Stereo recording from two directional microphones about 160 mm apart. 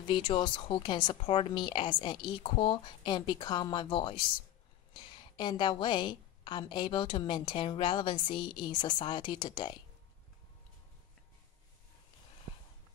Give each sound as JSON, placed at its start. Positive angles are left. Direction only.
{"t": 0.1, "sound": "a woman's voice", "side_deg": 30}